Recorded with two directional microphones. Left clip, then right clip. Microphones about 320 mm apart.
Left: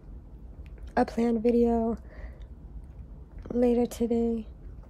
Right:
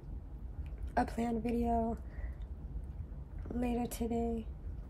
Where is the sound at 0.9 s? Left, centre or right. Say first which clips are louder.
Left 8 dB; left.